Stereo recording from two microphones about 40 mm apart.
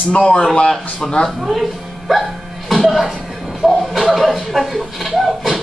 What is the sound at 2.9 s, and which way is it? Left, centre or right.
Speech, centre.